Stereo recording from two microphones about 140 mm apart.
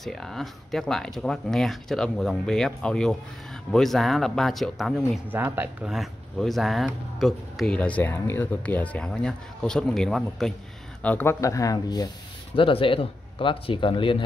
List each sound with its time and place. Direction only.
0.0 s speech: centre (ahead or behind)
5.3 s speech: 15° right (ahead or behind)
5.9 s speech: centre (ahead or behind); by 12.1 s 30° left (ahead or behind)
12.5 s speech: 40° left (ahead or behind)